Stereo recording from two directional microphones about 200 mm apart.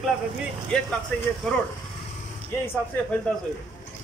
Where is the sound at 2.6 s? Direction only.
10° left (ahead or behind).